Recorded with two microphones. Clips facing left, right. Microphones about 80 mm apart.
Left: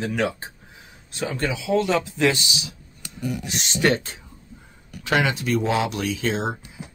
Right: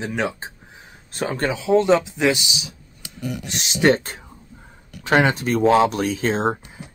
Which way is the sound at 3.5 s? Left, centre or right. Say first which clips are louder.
Even; centre.